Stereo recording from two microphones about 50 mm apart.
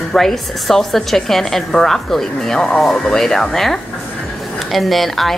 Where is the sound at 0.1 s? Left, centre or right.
Centre.